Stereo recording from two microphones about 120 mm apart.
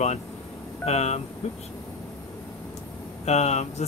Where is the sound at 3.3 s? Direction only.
65° left (ahead or behind).